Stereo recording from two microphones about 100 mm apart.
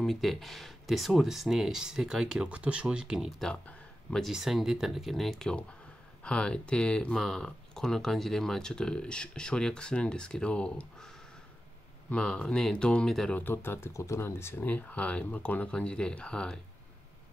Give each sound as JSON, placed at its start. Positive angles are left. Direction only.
{"t": 0.0, "sound": "speech", "side_deg": 0}
{"t": 3.6, "sound": "a sound", "side_deg": 5}
{"t": 4.3, "sound": "speech", "side_deg": 0}
{"t": 13.4, "sound": "speech", "side_deg": 20}